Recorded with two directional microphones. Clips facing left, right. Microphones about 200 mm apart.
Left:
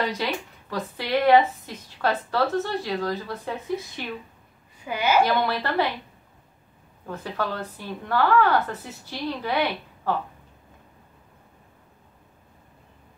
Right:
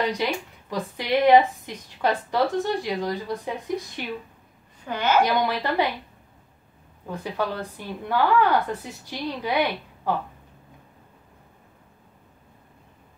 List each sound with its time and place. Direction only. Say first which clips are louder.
0.0 s a woman's voice: right 2 dB; 15° right (ahead or behind)
4.8 s a woman's voice: even; 10° left (ahead or behind)
5.2 s a woman's voice: even; 15° right (ahead or behind)
7.1 s a woman's voice: right 1 dB; 15° right (ahead or behind)